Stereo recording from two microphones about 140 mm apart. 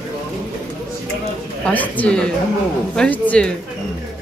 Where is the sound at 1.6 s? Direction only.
10° left (ahead or behind).